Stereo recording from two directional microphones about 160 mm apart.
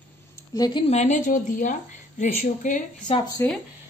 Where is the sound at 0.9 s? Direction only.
50° left (ahead or behind).